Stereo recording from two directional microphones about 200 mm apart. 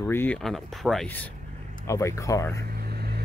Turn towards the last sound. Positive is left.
turn(degrees=-55)  # may be behind; listen again after turning